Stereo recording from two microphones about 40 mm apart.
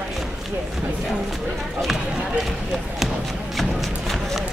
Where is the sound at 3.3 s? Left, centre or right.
Centre.